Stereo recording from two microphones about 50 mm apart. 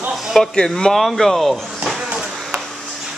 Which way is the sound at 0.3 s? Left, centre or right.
Centre.